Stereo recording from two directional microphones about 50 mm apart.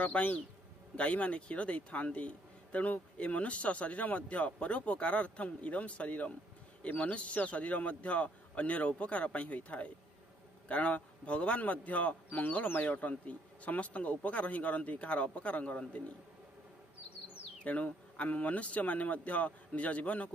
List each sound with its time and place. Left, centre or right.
0.0 s a man's voice: left
17.6 s a man's voice: left